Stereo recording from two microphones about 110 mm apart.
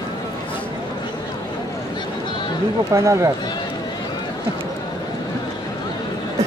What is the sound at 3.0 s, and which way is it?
Speech, 30° right (ahead or behind).